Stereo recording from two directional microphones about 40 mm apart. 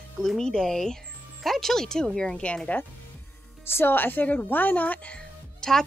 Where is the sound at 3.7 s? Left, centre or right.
Left.